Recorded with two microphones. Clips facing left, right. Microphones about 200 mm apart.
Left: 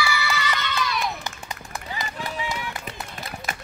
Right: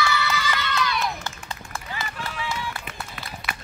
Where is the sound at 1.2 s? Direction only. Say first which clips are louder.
Even; 15° left (ahead or behind).